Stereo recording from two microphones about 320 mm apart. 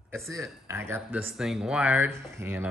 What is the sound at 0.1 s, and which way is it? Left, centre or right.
Speech, centre.